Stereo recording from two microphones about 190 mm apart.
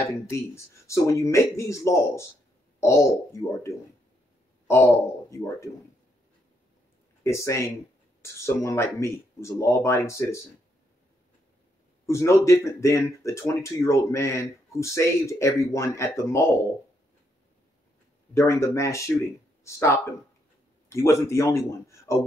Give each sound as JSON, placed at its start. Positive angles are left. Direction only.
{"t": 0.0, "sound": "speech", "side_deg": 15}
{"t": 7.2, "sound": "speech", "side_deg": 15}
{"t": 12.1, "sound": "speech", "side_deg": 15}
{"t": 18.3, "sound": "speech", "side_deg": 15}